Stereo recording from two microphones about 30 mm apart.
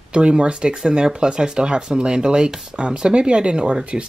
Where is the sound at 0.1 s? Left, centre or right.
Right.